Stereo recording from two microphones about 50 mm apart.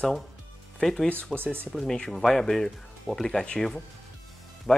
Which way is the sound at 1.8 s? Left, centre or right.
Centre.